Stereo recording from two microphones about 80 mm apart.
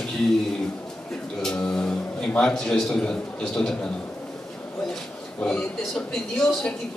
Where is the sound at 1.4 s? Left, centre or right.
Centre.